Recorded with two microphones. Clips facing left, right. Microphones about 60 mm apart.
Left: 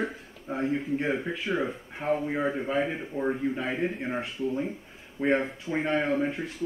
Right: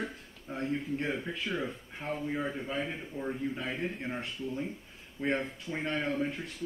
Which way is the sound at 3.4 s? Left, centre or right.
Centre.